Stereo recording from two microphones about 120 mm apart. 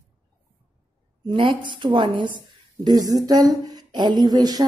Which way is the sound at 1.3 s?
45° right (ahead or behind).